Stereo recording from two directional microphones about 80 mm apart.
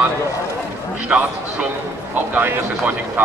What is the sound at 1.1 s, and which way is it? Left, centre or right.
Speech, right.